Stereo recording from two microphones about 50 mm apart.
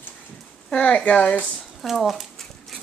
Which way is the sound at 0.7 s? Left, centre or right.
Centre.